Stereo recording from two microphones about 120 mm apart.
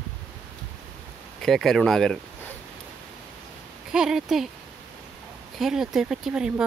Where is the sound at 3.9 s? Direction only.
5° right (ahead or behind).